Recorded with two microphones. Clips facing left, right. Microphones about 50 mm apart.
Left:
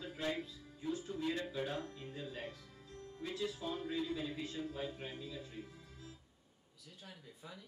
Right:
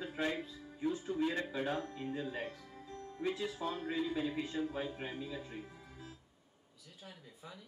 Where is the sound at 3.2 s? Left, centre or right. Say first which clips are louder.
Right 4 dB; right.